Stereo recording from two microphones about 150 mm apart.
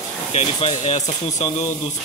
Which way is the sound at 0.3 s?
45° left (ahead or behind).